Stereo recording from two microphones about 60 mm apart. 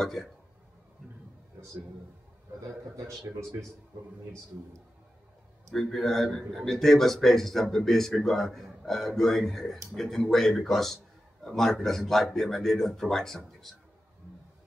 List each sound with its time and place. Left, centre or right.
0.0 s speech: centre
3.0 s a man's voice: right
5.7 s speech: centre